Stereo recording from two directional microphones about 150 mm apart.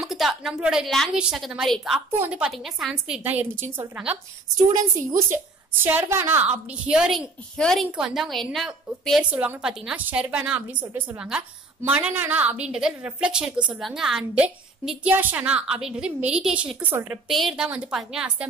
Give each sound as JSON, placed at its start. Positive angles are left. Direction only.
{"t": 0.0, "sound": "a woman's voice", "side_deg": 0}
{"t": 2.0, "sound": "a woman's voice", "side_deg": -15}
{"t": 17.3, "sound": "a woman's voice", "side_deg": 0}